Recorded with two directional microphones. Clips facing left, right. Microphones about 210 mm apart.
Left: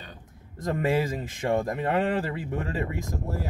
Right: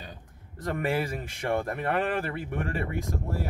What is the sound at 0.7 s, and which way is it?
Speech, 20° left (ahead or behind).